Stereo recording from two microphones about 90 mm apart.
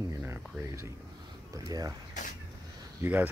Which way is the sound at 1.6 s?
45° right (ahead or behind).